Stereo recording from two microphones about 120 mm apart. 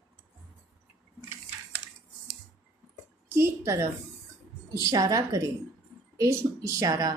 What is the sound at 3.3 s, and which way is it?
Speech, 25° right (ahead or behind).